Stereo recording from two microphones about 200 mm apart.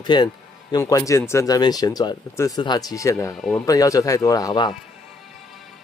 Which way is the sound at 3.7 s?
15° left (ahead or behind).